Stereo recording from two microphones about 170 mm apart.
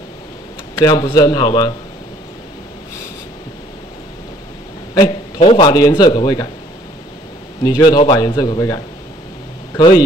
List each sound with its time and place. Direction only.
0.7 s a man's voice: 25° left (ahead or behind)
5.4 s a man's voice: 30° left (ahead or behind)
7.6 s a man's voice: 25° left (ahead or behind)